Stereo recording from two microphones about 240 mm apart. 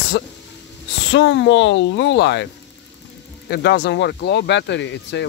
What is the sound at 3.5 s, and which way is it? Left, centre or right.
Speech, left.